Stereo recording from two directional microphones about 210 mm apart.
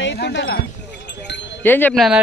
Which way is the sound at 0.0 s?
55° left (ahead or behind).